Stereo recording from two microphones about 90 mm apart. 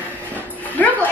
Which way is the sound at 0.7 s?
15° left (ahead or behind).